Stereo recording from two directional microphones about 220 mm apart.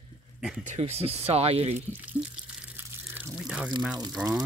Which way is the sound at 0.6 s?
30° right (ahead or behind).